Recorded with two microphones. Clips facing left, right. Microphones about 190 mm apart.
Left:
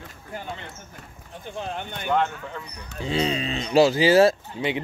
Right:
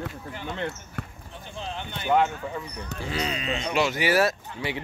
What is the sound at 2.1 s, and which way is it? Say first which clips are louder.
Speech: right 2 dB; 10° right (ahead or behind).